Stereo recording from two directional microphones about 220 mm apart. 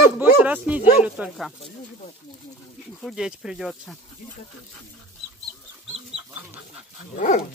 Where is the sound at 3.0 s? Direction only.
5° right (ahead or behind).